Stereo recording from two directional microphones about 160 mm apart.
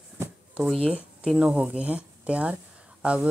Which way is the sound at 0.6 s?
5° right (ahead or behind).